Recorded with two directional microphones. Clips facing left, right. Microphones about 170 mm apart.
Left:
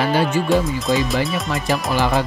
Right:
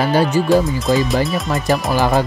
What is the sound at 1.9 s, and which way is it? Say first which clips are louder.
Speech: right 2 dB; 40° right (ahead or behind).